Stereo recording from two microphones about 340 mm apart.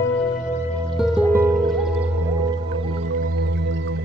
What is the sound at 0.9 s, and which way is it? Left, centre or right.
Music, centre.